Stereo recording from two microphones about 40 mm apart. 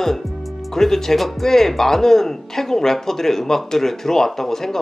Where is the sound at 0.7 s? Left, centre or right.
Centre.